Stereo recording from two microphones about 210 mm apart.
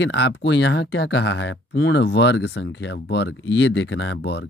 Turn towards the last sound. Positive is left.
turn(degrees=55)  # may be behind; listen again after turning